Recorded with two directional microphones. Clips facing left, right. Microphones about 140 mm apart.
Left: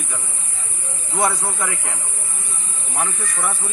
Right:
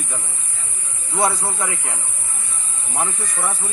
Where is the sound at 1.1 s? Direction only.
20° right (ahead or behind).